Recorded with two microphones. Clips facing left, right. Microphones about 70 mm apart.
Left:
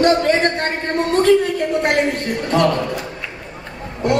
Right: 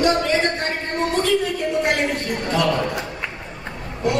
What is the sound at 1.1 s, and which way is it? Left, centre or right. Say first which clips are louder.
Speech: left 8 dB; left.